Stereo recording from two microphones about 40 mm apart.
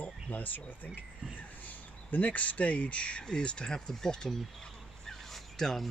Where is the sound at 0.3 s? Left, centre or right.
Left.